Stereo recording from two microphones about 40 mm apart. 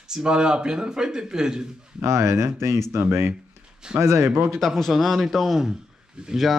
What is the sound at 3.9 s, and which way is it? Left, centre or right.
Speech, right.